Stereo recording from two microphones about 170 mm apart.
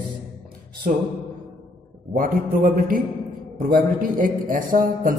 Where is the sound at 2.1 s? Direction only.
50° right (ahead or behind).